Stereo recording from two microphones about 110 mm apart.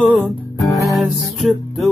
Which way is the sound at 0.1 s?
Centre (ahead or behind).